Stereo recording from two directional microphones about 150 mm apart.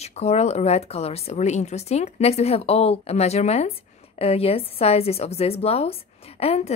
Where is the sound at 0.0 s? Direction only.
45° left (ahead or behind).